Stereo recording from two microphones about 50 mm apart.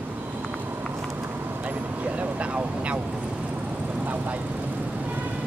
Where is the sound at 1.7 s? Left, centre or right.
Right.